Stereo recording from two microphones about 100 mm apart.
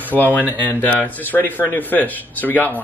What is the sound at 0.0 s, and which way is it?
Speech, 20° left (ahead or behind).